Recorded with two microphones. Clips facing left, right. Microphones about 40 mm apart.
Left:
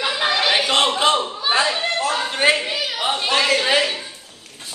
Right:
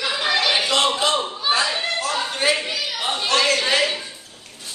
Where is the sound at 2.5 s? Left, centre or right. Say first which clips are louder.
Left 2 dB; centre.